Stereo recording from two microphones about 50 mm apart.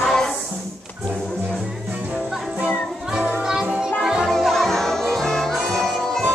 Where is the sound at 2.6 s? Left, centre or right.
Centre.